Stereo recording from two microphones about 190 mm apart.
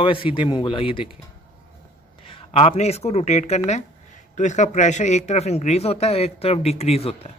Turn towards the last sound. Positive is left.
turn(degrees=30)  # may be behind; listen again after turning